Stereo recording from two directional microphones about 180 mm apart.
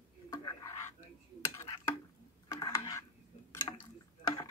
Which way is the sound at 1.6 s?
15° left (ahead or behind).